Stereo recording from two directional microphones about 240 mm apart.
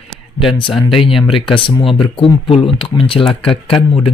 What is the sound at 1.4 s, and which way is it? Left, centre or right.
Speech, left.